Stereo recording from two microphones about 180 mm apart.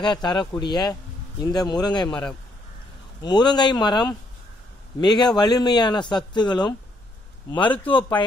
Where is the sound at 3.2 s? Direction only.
25° left (ahead or behind).